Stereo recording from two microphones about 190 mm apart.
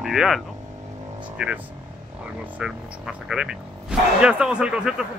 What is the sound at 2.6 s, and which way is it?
A man's voice, 5° right (ahead or behind).